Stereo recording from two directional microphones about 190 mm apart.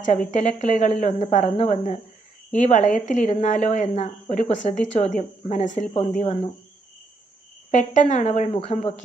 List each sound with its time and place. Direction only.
0.0 s speech: 40° left (ahead or behind)
7.7 s speech: 40° left (ahead or behind)